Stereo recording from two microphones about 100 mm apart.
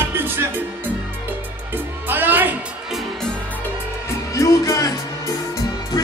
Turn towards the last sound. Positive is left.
turn(degrees=35)  # may be behind; listen again after turning